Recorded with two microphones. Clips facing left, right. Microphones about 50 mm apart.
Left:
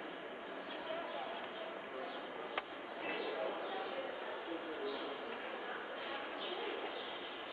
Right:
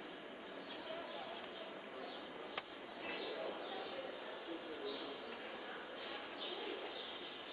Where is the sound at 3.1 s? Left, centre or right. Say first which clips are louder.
Left 4 dB; left.